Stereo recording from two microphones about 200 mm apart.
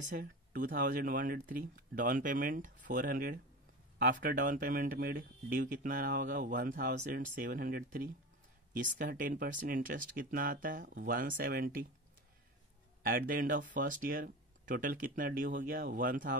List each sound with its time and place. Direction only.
0.0 s speech: 45° right (ahead or behind)
13.0 s speech: 45° right (ahead or behind)